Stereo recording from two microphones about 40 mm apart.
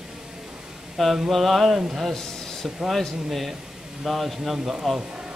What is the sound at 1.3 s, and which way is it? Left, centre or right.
Speech, centre.